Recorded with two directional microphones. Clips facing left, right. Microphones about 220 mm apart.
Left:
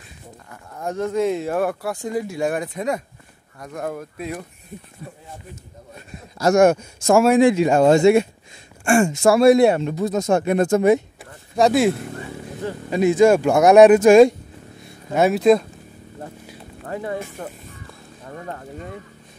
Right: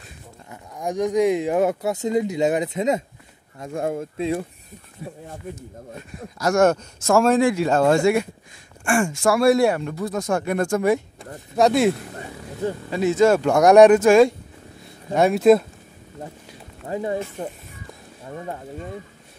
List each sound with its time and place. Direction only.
0.5 s speech: 15° right (ahead or behind)
5.0 s speech: 10° right (ahead or behind)
6.3 s speech: 25° left (ahead or behind)
6.6 s speech: 15° left (ahead or behind)
11.5 s speech: centre (ahead or behind)
12.9 s speech: 15° left (ahead or behind)
14.0 s speech: 20° left (ahead or behind)
15.1 s speech: centre (ahead or behind)
16.8 s speech: 20° right (ahead or behind)
18.2 s speech: 10° right (ahead or behind)